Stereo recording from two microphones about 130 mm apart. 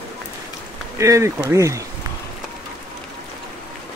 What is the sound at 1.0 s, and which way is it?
Speech, 25° right (ahead or behind).